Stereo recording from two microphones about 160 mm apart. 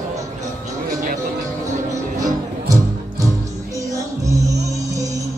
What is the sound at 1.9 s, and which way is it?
Music, 20° right (ahead or behind).